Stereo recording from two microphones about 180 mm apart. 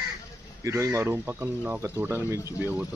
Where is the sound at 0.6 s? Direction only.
15° right (ahead or behind).